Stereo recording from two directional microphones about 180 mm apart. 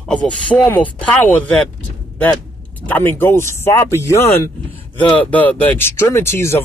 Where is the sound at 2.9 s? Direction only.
10° left (ahead or behind).